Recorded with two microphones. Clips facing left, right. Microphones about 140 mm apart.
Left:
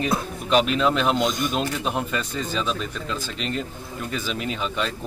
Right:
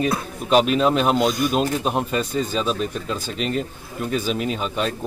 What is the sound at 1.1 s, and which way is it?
Speech, 5° right (ahead or behind).